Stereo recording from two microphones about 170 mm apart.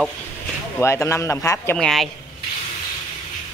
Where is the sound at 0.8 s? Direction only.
15° left (ahead or behind).